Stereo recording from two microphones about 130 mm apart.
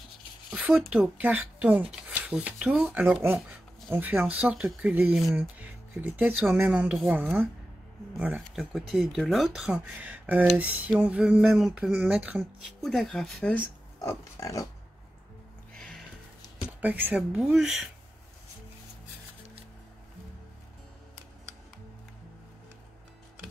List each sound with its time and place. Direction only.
0.6 s speech: 10° right (ahead or behind)
12.8 s speech: centre (ahead or behind)
14.0 s pig: 25° left (ahead or behind)
15.7 s music: 5° left (ahead or behind)
16.6 s speech: 10° right (ahead or behind)